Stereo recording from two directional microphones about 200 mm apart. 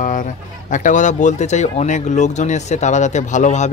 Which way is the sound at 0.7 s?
40° left (ahead or behind).